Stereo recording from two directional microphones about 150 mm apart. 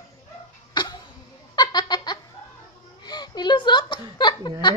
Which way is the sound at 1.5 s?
25° left (ahead or behind).